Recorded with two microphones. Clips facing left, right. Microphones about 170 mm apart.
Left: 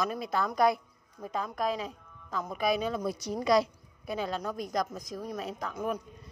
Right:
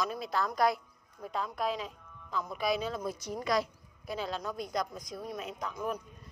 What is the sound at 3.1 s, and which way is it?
A woman's voice, 75° left (ahead or behind).